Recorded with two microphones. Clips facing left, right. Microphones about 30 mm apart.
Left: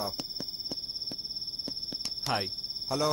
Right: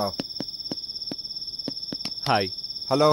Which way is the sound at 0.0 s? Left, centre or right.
Right.